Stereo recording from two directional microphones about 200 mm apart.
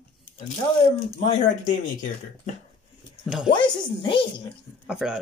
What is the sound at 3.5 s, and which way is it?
Speech, 25° left (ahead or behind).